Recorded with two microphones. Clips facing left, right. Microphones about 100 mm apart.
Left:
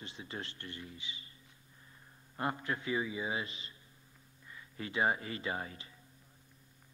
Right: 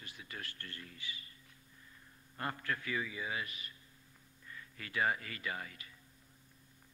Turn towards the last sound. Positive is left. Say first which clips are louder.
# left 4 dB
turn(degrees=25)  # may be behind; listen again after turning